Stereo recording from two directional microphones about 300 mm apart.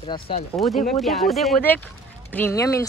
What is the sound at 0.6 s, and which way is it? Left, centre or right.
Speech, centre.